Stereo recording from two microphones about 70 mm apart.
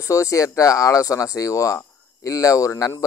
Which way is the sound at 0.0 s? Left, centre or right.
Left.